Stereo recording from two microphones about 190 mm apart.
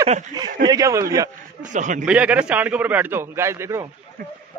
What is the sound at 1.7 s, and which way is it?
Speech, 40° right (ahead or behind).